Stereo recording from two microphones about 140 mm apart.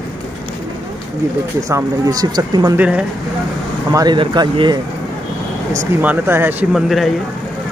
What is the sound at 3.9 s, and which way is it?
Speech, 25° right (ahead or behind).